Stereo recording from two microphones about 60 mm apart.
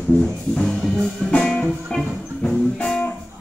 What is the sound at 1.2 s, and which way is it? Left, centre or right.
Music, centre.